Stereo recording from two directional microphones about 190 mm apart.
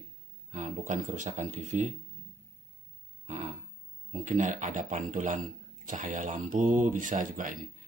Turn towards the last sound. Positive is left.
turn(degrees=-45)  # may be behind; listen again after turning